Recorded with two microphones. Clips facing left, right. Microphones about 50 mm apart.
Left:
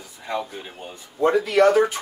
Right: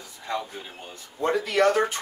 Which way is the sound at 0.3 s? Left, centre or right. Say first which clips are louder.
Left 3 dB; centre.